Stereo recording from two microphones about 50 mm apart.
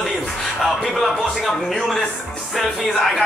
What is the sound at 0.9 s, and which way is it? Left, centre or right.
Speech, centre.